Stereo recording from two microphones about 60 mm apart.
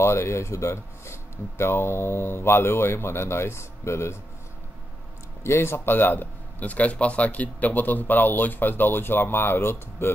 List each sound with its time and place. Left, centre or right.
0.0 s speech: left
5.4 s speech: left